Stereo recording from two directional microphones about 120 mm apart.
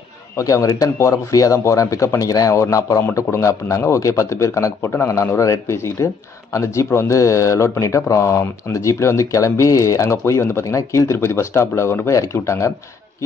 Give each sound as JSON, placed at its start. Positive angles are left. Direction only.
{"t": 0.4, "sound": "speech", "side_deg": 25}